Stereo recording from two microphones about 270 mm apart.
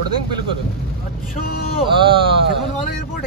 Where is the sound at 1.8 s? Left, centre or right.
Centre.